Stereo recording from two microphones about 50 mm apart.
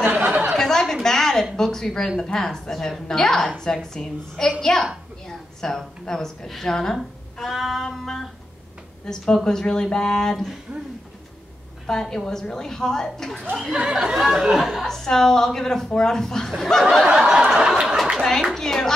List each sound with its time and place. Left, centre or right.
0.1 s a sound: right
0.6 s chuckle: centre
1.0 s a woman's voice: centre
7.3 s female singing: centre
9.0 s a woman's voice: centre
11.8 s a woman's voice: centre
13.6 s speech: centre
14.9 s a woman's voice: centre
17.1 s speech: centre
18.5 s a woman's voice: centre